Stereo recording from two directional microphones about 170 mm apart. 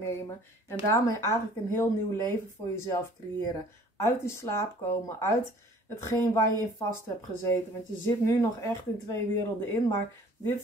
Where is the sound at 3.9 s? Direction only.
15° left (ahead or behind).